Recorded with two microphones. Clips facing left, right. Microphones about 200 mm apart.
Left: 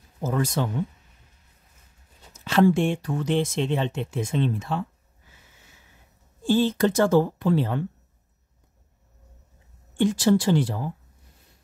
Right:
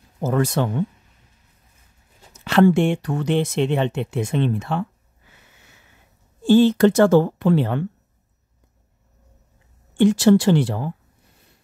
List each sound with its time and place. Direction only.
0.2 s speech: 65° right (ahead or behind)
2.3 s speech: 70° right (ahead or behind)
5.3 s sniff: 65° right (ahead or behind)
6.4 s speech: 70° right (ahead or behind)
9.9 s speech: 70° right (ahead or behind)